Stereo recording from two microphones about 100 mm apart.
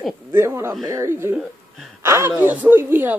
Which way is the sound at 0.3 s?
25° right (ahead or behind).